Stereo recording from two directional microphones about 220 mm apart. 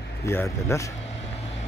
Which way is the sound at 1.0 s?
30° left (ahead or behind).